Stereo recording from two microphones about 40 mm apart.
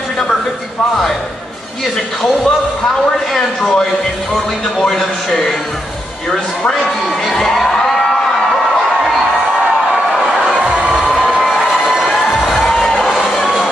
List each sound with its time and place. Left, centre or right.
3.1 s speech: centre
6.6 s speech: centre
7.5 s music: centre
11.1 s a sound: centre
11.3 s a sound: centre
12.4 s music: centre